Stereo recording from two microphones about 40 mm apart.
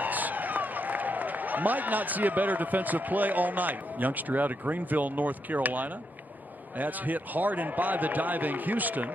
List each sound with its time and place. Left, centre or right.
0.0 s a man's voice: right